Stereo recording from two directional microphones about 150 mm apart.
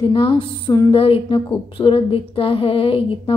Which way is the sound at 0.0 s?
35° left (ahead or behind).